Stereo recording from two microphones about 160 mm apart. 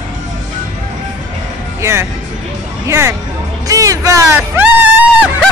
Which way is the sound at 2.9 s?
15° right (ahead or behind).